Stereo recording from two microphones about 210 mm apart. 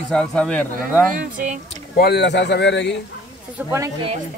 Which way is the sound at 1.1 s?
40° right (ahead or behind).